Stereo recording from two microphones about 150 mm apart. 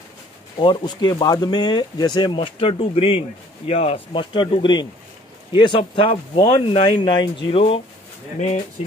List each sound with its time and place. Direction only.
0.6 s speech: 30° left (ahead or behind)